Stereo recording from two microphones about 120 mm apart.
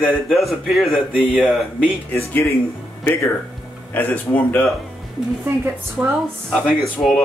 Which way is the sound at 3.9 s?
15° left (ahead or behind).